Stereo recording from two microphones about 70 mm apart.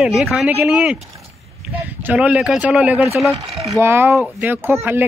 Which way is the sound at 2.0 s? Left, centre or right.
Right.